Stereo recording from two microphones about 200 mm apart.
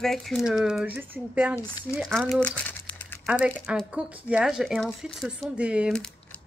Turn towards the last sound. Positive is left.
turn(degrees=0)  # may be behind; listen again after turning